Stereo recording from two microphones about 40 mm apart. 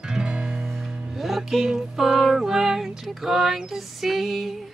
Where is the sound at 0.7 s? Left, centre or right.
Centre.